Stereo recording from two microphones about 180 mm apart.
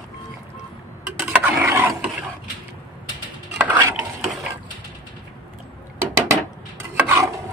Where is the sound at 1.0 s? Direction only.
5° right (ahead or behind).